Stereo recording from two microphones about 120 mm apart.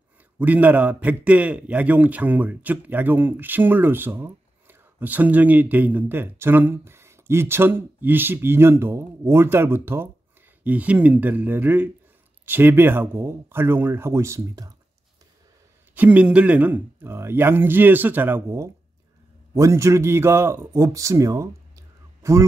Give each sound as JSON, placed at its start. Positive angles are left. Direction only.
{"t": 0.4, "sound": "a man's voice", "side_deg": -15}
{"t": 15.9, "sound": "a man's voice", "side_deg": -15}